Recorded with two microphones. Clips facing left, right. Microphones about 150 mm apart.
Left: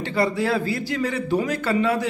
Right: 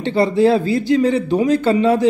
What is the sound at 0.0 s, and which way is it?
Speech, 25° right (ahead or behind).